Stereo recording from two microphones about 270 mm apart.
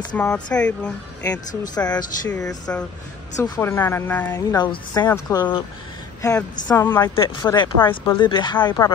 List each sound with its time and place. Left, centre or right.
0.1 s speech: centre
1.6 s a woman's voice: centre
6.7 s a woman's voice: centre